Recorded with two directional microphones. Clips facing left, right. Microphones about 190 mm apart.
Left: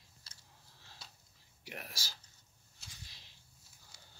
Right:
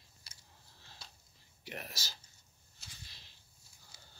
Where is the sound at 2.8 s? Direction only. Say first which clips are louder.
Even; centre (ahead or behind).